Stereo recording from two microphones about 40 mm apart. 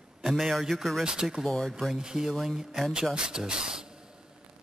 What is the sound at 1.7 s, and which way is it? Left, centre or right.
Speech, centre.